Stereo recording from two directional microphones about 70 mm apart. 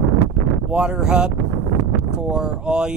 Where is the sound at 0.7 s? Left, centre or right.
Centre.